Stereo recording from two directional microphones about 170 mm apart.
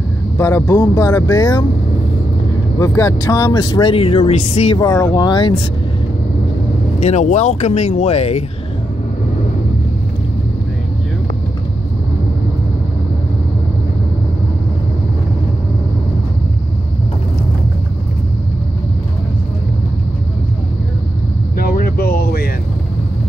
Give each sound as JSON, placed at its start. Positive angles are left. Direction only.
{"t": 0.4, "sound": "speech", "side_deg": 15}
{"t": 2.8, "sound": "speech", "side_deg": 15}
{"t": 4.7, "sound": "speech", "side_deg": 20}
{"t": 7.0, "sound": "speech", "side_deg": 45}
{"t": 21.5, "sound": "a sound", "side_deg": 60}